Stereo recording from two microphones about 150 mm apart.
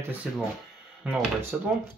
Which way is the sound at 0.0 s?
10° right (ahead or behind).